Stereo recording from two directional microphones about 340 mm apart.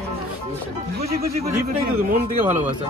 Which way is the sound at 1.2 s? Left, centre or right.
Right.